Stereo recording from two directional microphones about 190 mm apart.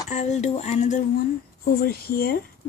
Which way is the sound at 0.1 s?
35° left (ahead or behind).